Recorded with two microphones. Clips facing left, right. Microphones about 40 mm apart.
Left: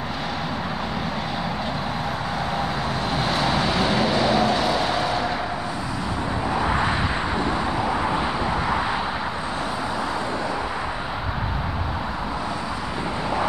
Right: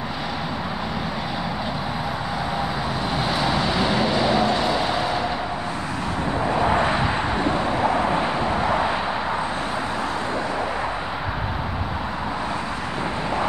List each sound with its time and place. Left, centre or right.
3.2 s vehicle: centre
7.3 s vehicle: right
8.5 s vehicle: centre